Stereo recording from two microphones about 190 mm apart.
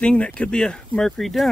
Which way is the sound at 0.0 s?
5° left (ahead or behind).